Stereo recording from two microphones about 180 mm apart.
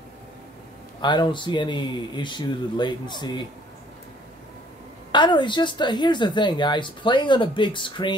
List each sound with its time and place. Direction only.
1.0 s speech: 25° left (ahead or behind)
5.1 s speech: 25° left (ahead or behind)